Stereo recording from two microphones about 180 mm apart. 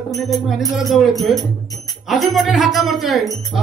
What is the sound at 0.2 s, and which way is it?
Speech, centre (ahead or behind).